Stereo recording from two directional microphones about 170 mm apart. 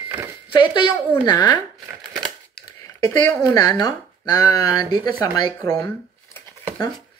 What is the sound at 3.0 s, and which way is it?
Speech, 15° left (ahead or behind).